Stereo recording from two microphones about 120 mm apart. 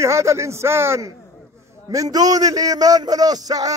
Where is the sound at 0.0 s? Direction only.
25° right (ahead or behind).